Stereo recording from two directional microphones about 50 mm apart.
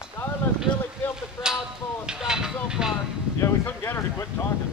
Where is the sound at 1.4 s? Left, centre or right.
Left.